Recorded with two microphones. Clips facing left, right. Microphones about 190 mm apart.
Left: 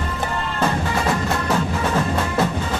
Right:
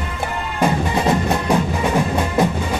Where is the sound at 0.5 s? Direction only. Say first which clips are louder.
Right 4 dB; 15° right (ahead or behind).